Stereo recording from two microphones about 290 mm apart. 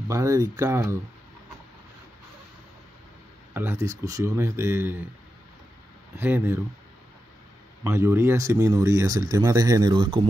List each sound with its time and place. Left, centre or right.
0.1 s speech: centre
3.5 s speech: centre
6.1 s speech: centre
7.8 s speech: centre